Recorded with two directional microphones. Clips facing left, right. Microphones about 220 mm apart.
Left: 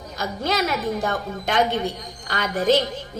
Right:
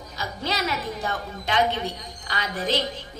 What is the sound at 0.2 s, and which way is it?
Speech, 50° left (ahead or behind).